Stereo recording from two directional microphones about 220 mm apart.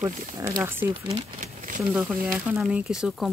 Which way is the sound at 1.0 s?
30° right (ahead or behind).